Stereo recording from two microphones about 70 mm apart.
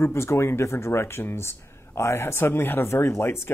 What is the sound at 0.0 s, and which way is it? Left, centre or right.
Speech, left.